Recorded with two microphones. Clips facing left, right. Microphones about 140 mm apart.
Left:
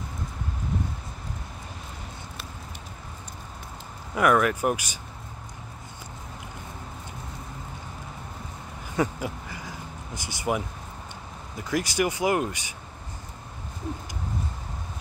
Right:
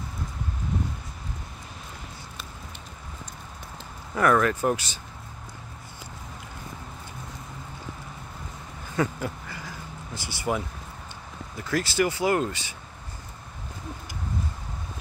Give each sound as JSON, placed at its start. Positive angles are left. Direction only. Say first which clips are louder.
{"t": 4.1, "sound": "speech", "louder": "even", "side_deg": 10}
{"t": 8.9, "sound": "a sound", "louder": "even", "side_deg": 15}
{"t": 11.5, "sound": "speech", "louder": "right 1 dB", "side_deg": 15}